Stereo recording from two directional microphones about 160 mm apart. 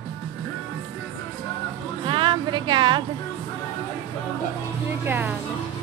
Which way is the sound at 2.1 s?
30° right (ahead or behind).